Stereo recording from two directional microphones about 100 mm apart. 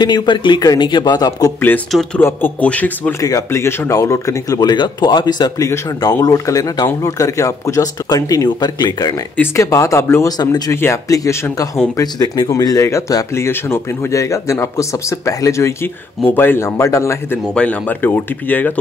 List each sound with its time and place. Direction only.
0.0 s speech: 45° left (ahead or behind)
2.1 s speech: 20° left (ahead or behind)
3.2 s speech: 35° left (ahead or behind)
3.4 s speech: 25° left (ahead or behind)
10.2 s speech: 40° left (ahead or behind)
10.7 s speech: 25° left (ahead or behind)
17.6 s speech: 15° left (ahead or behind)